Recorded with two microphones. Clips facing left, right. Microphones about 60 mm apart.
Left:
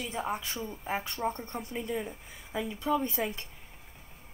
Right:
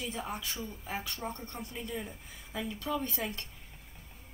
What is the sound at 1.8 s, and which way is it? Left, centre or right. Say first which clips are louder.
Speech: left 5 dB; centre.